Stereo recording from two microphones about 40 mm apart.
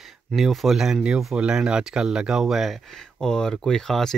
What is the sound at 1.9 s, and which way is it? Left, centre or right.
Speech, right.